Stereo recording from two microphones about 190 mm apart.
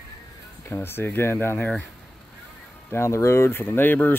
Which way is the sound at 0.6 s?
10° left (ahead or behind).